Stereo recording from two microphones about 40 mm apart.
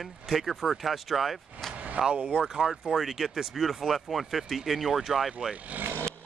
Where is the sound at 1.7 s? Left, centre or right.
Right.